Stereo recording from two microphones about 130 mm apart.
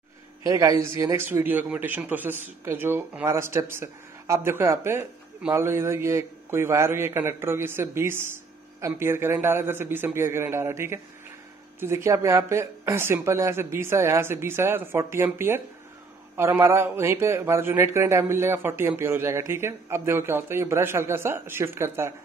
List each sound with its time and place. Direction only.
0.4 s a man's voice: 25° right (ahead or behind)